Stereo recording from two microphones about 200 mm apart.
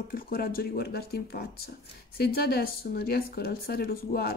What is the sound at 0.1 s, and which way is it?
Speech, 45° left (ahead or behind).